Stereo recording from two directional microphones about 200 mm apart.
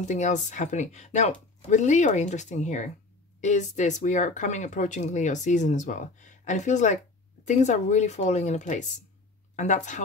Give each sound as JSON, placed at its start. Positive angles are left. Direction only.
{"t": 0.0, "sound": "speech", "side_deg": 35}